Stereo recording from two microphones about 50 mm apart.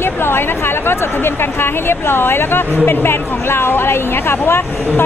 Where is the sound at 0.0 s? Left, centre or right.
Left.